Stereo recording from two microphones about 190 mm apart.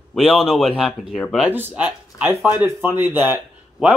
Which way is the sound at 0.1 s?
Centre (ahead or behind).